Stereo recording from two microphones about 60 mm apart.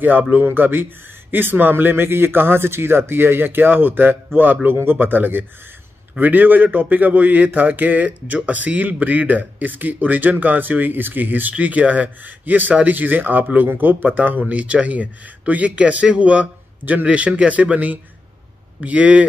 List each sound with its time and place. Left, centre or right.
0.2 s speech: right